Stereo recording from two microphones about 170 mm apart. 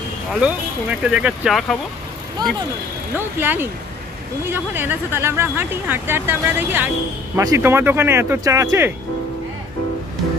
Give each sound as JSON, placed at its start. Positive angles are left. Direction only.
{"t": 0.3, "sound": "speech", "side_deg": -5}
{"t": 2.4, "sound": "speech", "side_deg": -25}
{"t": 3.2, "sound": "speech", "side_deg": -10}